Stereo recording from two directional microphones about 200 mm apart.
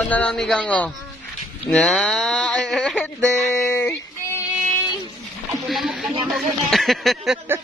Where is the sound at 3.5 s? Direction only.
10° left (ahead or behind).